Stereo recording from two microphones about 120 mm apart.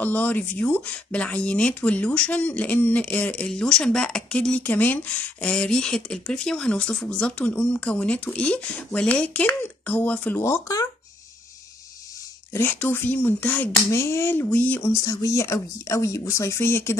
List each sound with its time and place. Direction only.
0.0 s speech: 15° left (ahead or behind)
10.4 s speech: 25° left (ahead or behind)
12.5 s speech: 15° left (ahead or behind)
14.9 s speech: 25° left (ahead or behind)